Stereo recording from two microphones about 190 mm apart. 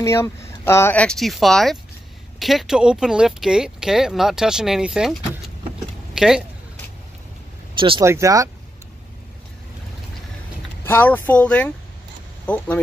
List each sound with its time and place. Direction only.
0.0 s speech: 15° left (ahead or behind); by 6.4 s centre (ahead or behind)
7.7 s vehicle: 30° right (ahead or behind)
8.0 s speech: 15° right (ahead or behind)
10.8 s speech: 10° left (ahead or behind)